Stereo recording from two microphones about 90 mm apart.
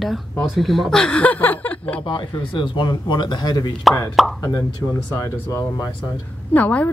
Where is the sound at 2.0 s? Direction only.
60° left (ahead or behind).